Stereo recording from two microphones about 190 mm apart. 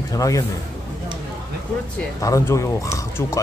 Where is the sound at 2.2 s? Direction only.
15° left (ahead or behind).